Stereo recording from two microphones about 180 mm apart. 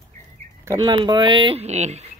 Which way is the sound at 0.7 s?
25° right (ahead or behind).